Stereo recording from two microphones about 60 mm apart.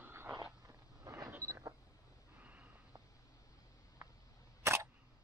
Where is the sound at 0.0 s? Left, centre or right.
Right.